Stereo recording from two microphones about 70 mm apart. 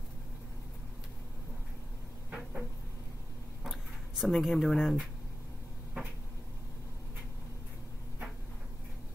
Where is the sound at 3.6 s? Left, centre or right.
Centre.